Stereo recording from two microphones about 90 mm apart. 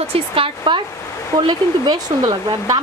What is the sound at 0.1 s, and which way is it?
Speech, 90° right.